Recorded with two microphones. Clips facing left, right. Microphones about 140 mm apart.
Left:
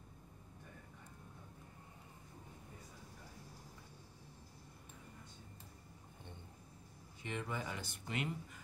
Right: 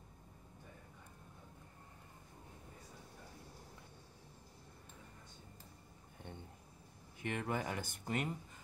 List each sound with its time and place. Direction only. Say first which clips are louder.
7.2 s speech: right 4 dB; 55° right (ahead or behind)